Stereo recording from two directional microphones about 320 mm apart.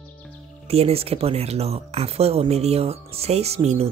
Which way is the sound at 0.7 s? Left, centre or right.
Centre.